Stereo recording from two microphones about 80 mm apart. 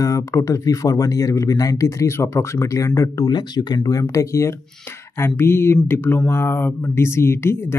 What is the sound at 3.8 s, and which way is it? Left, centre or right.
Speech, left.